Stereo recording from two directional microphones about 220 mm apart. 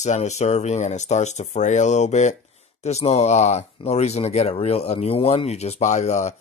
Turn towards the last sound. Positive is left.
turn(degrees=30)  # may be behind; listen again after turning